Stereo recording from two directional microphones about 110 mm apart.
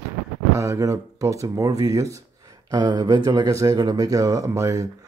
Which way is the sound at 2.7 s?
40° right (ahead or behind).